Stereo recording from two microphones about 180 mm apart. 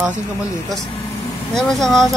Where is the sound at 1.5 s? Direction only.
Centre (ahead or behind).